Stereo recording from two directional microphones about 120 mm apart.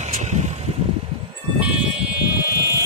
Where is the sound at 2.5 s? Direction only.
20° right (ahead or behind).